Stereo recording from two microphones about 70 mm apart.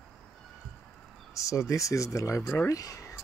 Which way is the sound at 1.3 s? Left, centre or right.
Left.